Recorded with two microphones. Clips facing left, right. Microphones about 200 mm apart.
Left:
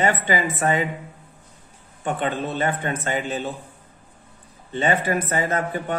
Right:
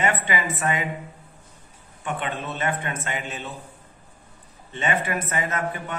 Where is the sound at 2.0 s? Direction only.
35° left (ahead or behind).